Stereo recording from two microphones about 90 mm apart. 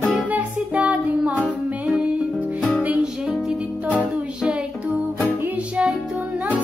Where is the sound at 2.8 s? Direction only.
15° right (ahead or behind).